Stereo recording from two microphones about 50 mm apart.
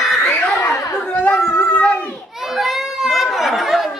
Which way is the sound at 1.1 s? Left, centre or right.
Left.